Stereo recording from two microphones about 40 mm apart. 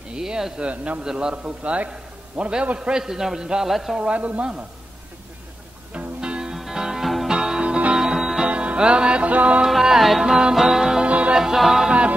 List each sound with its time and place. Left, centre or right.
0.1 s a man's voice: centre
0.6 s a man's voice: right
1.0 s speech: centre
1.3 s a man's voice: right
2.9 s a man's voice: centre
3.7 s music: centre
4.0 s speech: right
5.9 s music: right
6.5 s music: centre
8.5 s music: right
9.7 s music: centre
10.2 s a man's voice: centre
11.1 s music: right
11.3 s a man's voice: centre